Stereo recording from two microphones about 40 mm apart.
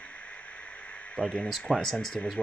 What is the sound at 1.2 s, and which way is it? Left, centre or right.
Speech, left.